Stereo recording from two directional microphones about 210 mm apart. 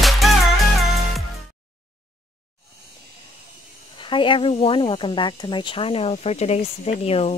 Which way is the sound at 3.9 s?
25° left (ahead or behind).